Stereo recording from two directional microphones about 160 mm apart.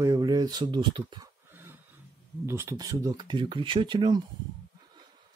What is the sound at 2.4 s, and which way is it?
Speech, 15° right (ahead or behind).